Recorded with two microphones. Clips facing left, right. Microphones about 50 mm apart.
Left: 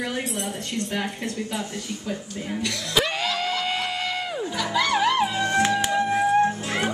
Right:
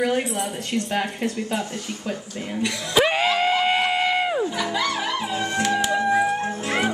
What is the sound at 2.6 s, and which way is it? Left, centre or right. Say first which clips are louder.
Music: right 5 dB; right.